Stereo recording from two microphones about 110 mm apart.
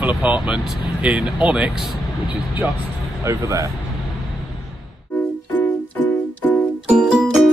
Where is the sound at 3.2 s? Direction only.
30° right (ahead or behind).